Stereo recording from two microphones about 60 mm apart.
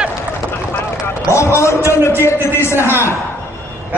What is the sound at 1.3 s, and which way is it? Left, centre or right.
Speech, left.